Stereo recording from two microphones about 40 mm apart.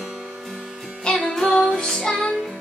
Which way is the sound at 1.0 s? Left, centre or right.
Centre.